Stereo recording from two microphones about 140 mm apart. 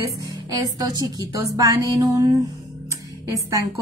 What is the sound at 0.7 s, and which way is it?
Speech, 25° right (ahead or behind).